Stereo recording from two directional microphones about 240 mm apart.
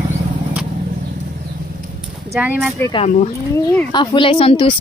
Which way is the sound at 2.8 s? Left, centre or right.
Left.